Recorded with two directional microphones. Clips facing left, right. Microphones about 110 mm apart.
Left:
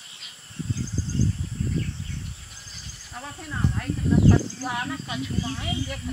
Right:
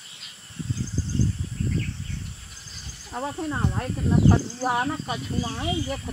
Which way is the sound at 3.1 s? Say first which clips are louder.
Right 8 dB; 35° right (ahead or behind).